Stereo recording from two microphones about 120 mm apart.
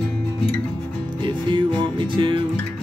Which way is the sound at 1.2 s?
40° right (ahead or behind).